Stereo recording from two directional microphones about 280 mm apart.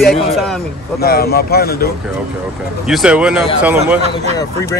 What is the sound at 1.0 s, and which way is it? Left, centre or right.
Speech, left.